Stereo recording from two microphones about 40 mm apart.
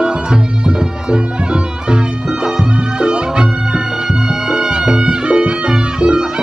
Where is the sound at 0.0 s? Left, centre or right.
Right.